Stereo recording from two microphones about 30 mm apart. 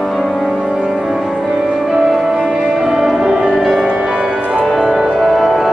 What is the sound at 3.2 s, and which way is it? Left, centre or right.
Music, right.